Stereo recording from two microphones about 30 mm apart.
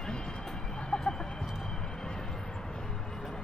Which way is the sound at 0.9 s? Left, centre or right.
Left.